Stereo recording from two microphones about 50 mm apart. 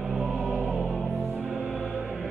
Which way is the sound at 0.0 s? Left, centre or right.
Centre.